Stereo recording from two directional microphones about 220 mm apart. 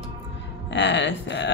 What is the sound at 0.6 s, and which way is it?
Speech, 55° left (ahead or behind).